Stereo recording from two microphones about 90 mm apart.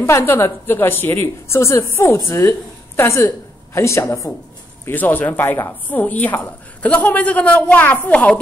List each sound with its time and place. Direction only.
0.0 s a woman's voice: 30° left (ahead or behind)
4.8 s a woman's voice: 20° left (ahead or behind)